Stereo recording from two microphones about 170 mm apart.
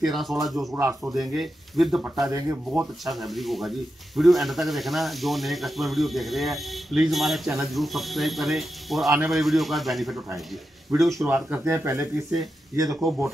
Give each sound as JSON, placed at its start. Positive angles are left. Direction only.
{"t": 0.1, "sound": "speech", "side_deg": 0}
{"t": 0.7, "sound": "speech", "side_deg": -15}
{"t": 1.3, "sound": "speech", "side_deg": 0}
{"t": 3.1, "sound": "speech", "side_deg": 0}
{"t": 10.9, "sound": "speech", "side_deg": -20}